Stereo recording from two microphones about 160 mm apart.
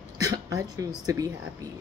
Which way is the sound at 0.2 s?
20° right (ahead or behind).